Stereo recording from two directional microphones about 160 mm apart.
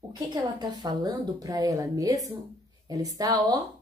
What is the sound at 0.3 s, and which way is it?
A woman's voice, 25° right (ahead or behind).